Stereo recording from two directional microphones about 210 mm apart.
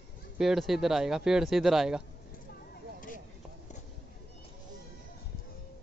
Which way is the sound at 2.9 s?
40° left (ahead or behind).